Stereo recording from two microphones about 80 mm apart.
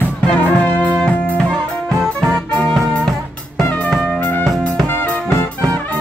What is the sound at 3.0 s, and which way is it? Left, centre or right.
Music, centre.